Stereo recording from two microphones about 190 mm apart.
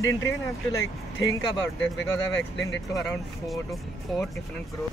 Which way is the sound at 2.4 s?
75° left (ahead or behind).